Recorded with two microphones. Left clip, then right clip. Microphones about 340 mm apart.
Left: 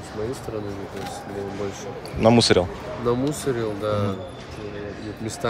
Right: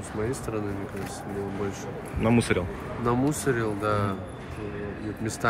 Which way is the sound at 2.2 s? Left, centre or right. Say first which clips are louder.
Left 8 dB; centre.